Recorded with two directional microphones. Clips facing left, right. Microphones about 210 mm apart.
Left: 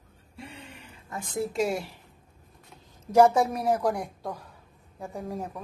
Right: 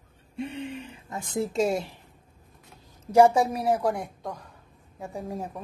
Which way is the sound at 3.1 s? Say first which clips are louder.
Right 1 dB; 10° right (ahead or behind).